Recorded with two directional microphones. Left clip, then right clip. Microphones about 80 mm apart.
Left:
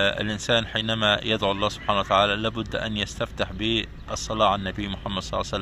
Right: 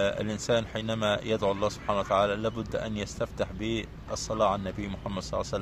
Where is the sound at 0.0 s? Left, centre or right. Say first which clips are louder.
Left 5 dB; centre.